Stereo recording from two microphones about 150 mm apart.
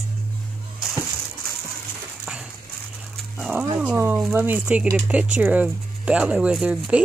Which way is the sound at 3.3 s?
Centre (ahead or behind).